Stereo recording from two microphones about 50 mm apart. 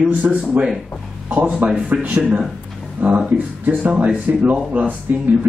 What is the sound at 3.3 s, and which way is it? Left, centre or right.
Speech, right.